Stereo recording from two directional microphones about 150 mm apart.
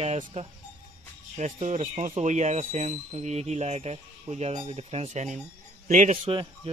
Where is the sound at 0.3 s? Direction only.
50° right (ahead or behind).